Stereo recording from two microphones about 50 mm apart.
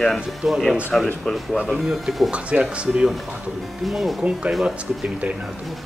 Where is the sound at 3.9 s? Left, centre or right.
Centre.